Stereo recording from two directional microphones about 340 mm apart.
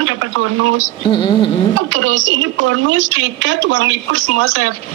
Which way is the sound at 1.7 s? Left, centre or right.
Right.